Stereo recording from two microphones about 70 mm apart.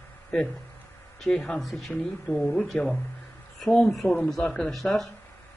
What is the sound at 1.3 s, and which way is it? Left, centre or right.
Speech, centre.